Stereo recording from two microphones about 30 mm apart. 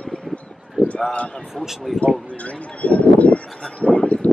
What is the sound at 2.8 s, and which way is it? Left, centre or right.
Speech, left.